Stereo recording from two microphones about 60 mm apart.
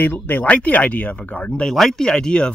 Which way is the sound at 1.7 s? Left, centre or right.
Centre.